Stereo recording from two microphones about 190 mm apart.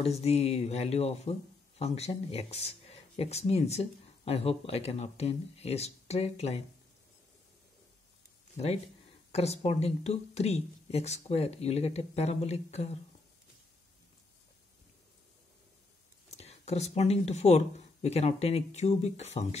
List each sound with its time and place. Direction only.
0.0 s speech: 35° left (ahead or behind)
9.3 s speech: 35° left (ahead or behind)
16.3 s speech: 35° left (ahead or behind)